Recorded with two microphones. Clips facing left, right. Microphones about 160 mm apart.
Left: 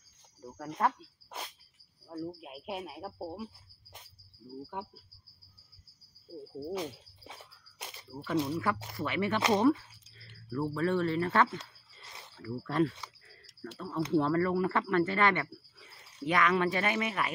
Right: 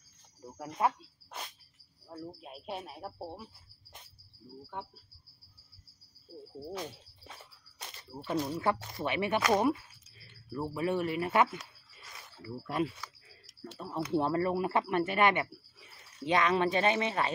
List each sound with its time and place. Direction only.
0.6 s speech: 10° right (ahead or behind)
2.0 s a man's voice: 5° left (ahead or behind)
6.7 s speech: 15° left (ahead or behind)
8.1 s speech: 20° right (ahead or behind)
11.5 s a sound: 30° left (ahead or behind)
12.4 s speech: 10° right (ahead or behind); by 17.3 s 30° right (ahead or behind)